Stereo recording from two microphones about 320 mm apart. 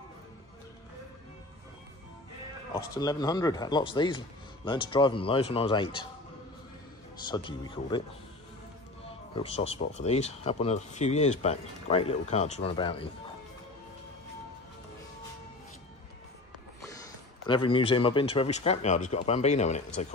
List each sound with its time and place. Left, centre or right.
2.9 s speech: centre
7.2 s speech: centre
9.3 s speech: centre
17.5 s speech: centre